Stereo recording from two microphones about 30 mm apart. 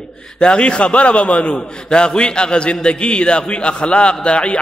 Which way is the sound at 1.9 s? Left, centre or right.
Left.